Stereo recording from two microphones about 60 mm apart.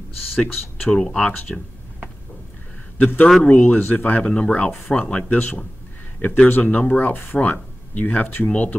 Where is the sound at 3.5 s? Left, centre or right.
Left.